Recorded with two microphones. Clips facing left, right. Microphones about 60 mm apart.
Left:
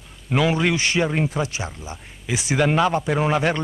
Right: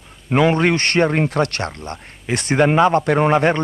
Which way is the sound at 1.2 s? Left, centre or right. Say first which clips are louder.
Right 5 dB; right.